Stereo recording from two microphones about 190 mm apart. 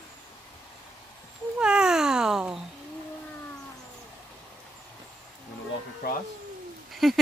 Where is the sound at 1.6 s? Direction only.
5° right (ahead or behind).